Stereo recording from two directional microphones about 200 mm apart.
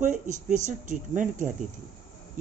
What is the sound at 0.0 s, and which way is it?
Speech, 40° right (ahead or behind).